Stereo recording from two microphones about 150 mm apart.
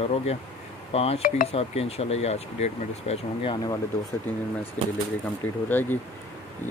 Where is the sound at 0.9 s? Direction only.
40° left (ahead or behind).